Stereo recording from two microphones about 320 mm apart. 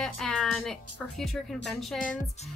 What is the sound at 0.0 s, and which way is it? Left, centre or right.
A woman's voice, centre.